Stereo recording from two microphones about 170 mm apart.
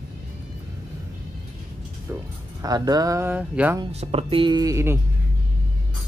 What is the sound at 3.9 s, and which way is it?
Speech, 35° right (ahead or behind).